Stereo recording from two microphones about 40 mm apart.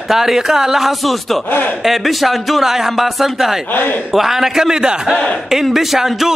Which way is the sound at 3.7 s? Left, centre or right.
Left.